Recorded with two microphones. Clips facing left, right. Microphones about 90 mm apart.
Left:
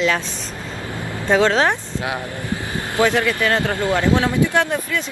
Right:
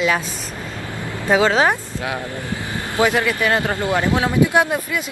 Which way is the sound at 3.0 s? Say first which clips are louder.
Even; 15° right (ahead or behind).